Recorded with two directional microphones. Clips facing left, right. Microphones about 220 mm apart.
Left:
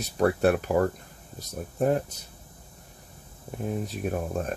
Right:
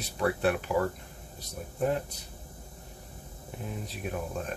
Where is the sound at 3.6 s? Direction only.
45° left (ahead or behind).